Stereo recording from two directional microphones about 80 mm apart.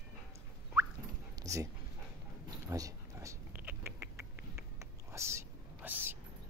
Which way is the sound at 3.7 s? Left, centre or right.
Right.